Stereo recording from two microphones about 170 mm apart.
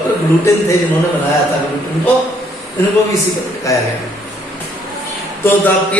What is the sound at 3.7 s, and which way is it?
Speech, 20° left (ahead or behind).